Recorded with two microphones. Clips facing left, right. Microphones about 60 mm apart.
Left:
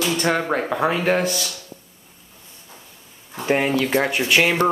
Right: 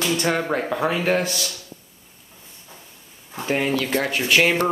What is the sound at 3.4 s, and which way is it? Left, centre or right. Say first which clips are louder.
Speech: left 3 dB; centre.